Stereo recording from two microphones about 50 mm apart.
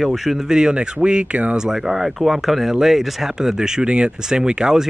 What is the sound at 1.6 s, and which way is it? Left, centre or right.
Speech, centre.